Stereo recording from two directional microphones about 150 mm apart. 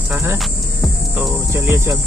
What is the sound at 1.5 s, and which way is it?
Speech, 20° right (ahead or behind).